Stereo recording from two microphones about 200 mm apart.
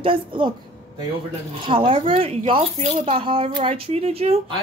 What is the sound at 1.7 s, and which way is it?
Speech, 25° right (ahead or behind).